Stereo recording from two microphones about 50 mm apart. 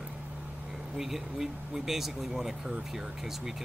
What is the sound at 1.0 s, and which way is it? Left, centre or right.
Speech, centre.